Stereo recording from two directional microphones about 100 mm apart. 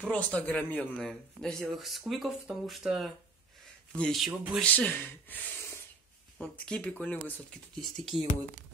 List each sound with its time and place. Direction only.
0.0 s speech: 10° left (ahead or behind)
0.9 s speech: 5° left (ahead or behind)
3.9 s a man's voice: 10° left (ahead or behind)
4.2 s speech: 5° right (ahead or behind)
4.6 s speech: 15° left (ahead or behind)
6.3 s speech: 10° left (ahead or behind)
7.8 s speech: centre (ahead or behind)